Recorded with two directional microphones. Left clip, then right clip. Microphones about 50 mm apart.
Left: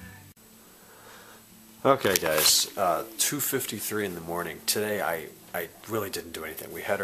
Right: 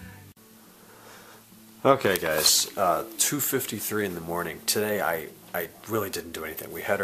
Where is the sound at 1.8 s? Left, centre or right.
Centre.